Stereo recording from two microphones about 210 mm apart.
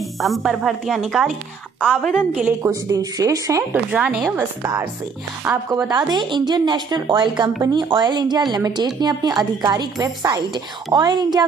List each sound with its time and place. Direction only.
0.2 s a woman's voice: centre (ahead or behind); by 3.6 s 15° right (ahead or behind)
3.7 s a woman's voice: 5° right (ahead or behind)
5.9 s speech: 20° right (ahead or behind)